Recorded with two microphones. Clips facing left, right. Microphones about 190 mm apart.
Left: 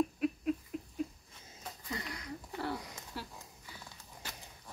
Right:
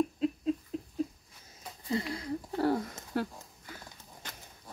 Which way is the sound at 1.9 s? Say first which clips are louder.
Right 10 dB; 30° right (ahead or behind).